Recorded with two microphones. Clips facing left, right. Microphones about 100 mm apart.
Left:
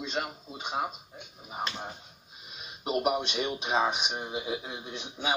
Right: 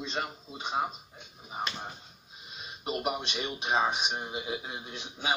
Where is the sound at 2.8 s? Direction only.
15° left (ahead or behind).